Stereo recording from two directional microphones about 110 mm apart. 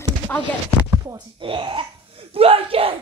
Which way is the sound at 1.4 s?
55° right (ahead or behind).